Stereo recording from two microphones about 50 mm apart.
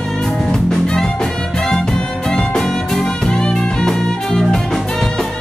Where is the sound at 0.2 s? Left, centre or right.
Centre.